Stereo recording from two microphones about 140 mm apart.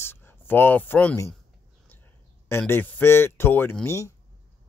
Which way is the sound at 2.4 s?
15° left (ahead or behind).